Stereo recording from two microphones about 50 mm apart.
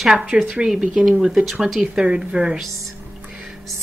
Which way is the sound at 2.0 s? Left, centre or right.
Centre.